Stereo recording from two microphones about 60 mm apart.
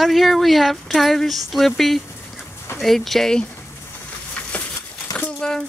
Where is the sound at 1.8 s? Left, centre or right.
Centre.